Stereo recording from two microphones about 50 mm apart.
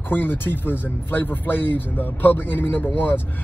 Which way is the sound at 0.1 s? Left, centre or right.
Left.